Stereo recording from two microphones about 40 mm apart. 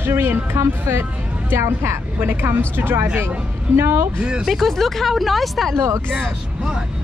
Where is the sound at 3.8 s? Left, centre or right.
Right.